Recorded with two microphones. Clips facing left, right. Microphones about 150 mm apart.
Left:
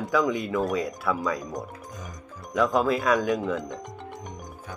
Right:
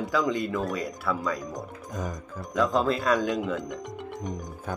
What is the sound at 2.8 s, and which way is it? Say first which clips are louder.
Speech: left 1 dB; 5° left (ahead or behind).